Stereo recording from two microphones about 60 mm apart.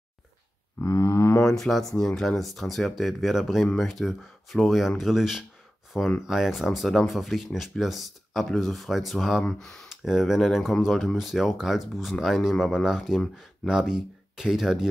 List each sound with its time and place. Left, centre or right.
0.8 s a sound: left
1.4 s speech: centre
9.5 s speech: centre
9.8 s speech: centre